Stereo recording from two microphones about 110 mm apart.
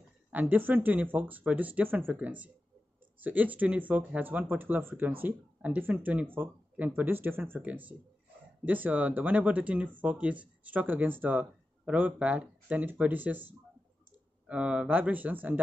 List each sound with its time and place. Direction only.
0.3 s speech: 15° right (ahead or behind)